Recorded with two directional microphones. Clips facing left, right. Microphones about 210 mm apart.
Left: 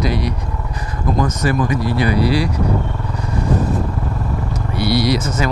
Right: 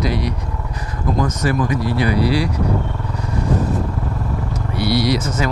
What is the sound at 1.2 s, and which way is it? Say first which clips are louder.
Speech: left 1 dB; 20° left (ahead or behind).